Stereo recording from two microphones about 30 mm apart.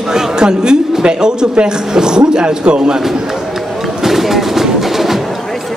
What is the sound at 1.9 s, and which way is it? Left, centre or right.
A man's voice, right.